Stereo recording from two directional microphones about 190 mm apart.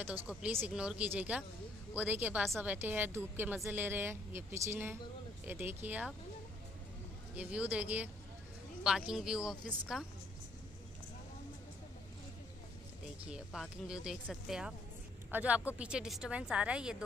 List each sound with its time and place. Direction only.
0.0 s a woman's voice: 10° right (ahead or behind)
7.3 s a woman's voice: 5° right (ahead or behind)
13.2 s a woman's voice: 5° right (ahead or behind)